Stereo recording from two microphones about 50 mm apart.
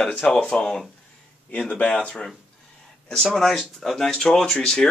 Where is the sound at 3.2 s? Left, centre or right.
Centre.